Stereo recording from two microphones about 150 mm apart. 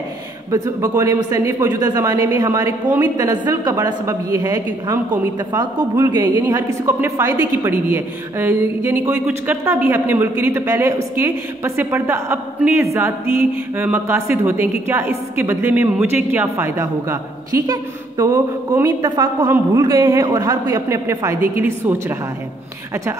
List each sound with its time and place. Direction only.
0.5 s a woman's voice: 20° right (ahead or behind)